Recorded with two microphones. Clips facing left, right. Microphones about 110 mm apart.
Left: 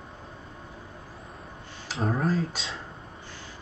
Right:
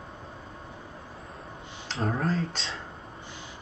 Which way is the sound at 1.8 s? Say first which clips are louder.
Left 1 dB; centre (ahead or behind).